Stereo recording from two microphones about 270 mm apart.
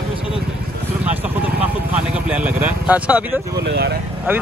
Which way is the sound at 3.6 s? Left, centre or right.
Right.